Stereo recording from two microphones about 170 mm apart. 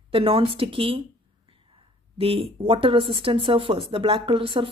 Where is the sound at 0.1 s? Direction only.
30° right (ahead or behind).